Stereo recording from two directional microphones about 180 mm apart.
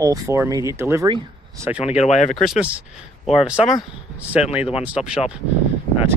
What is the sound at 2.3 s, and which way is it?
Speech, centre (ahead or behind).